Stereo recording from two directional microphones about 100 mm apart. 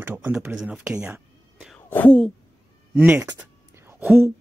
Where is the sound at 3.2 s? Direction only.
25° right (ahead or behind).